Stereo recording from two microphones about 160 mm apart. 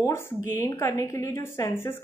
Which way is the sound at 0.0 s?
15° left (ahead or behind).